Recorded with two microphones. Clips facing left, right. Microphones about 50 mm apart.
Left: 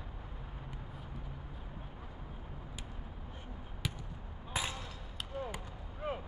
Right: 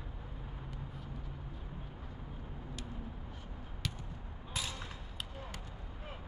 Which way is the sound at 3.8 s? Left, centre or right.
Centre.